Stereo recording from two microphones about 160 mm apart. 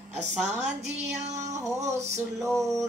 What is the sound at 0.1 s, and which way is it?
Music, 45° right (ahead or behind).